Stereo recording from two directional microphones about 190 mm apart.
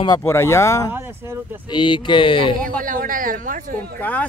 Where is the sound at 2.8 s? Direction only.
45° right (ahead or behind).